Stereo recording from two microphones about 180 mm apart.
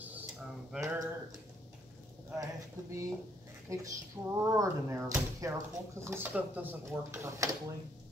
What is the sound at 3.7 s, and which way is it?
Speech, 20° right (ahead or behind).